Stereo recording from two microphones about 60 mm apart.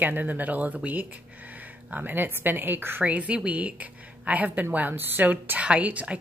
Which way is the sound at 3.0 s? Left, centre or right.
Right.